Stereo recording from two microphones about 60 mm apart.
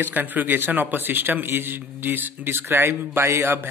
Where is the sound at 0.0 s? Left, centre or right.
Right.